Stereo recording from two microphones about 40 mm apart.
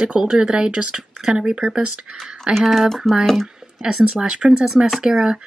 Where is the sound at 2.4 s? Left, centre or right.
Centre.